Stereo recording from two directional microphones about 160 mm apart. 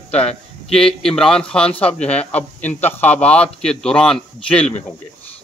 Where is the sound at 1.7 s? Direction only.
35° left (ahead or behind).